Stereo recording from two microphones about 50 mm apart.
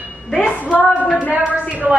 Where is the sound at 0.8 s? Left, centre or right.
Right.